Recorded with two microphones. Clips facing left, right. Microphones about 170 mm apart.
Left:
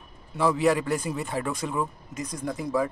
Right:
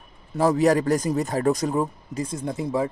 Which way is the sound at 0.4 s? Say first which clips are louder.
Right 4 dB; 40° right (ahead or behind).